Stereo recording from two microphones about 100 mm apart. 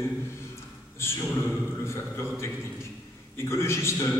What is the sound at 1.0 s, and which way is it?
Speech, 25° left (ahead or behind).